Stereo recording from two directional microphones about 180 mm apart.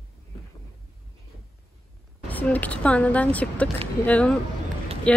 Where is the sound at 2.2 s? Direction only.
10° left (ahead or behind).